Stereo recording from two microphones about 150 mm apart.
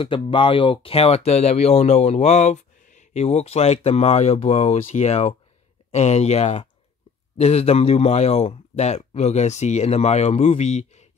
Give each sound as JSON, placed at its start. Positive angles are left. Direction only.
{"t": 0.0, "sound": "speech", "side_deg": 35}